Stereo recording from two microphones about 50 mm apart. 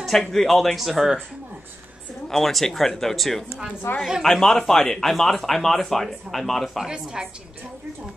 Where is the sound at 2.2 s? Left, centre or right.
Centre.